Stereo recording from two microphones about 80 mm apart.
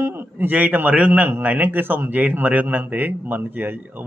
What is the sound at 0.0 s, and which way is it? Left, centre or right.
A man's voice, right.